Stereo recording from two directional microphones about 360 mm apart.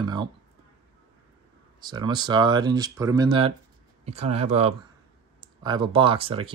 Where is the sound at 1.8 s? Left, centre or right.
Centre.